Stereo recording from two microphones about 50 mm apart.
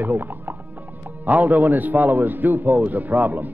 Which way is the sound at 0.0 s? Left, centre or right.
Right.